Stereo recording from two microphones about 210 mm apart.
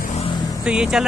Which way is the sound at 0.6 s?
5° right (ahead or behind).